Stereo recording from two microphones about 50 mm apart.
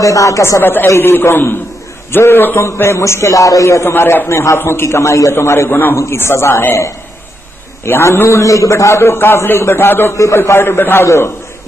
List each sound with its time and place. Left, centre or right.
0.0 s a man's voice: left
2.6 s a man's voice: left
3.8 s a man's voice: left
5.3 s speech: left
5.7 s a man's voice: left
6.1 s speech: left
7.8 s a man's voice: left
8.9 s a man's voice: left
10.1 s speech: left
10.4 s a man's voice: left
11.1 s a man's voice: left